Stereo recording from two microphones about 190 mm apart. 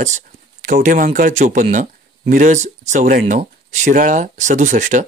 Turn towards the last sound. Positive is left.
turn(degrees=-40)  # may be behind; listen again after turning